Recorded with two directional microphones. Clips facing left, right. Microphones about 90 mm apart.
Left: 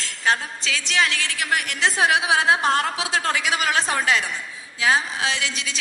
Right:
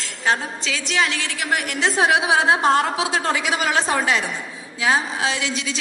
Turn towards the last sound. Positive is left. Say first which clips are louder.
# right 3 dB
turn(degrees=-35)  # may be behind; listen again after turning